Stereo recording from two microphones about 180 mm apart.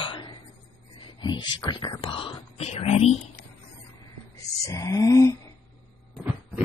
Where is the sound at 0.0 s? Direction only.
30° left (ahead or behind).